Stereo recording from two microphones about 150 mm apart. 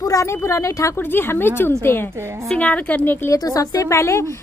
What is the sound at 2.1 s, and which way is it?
Speech, 15° right (ahead or behind).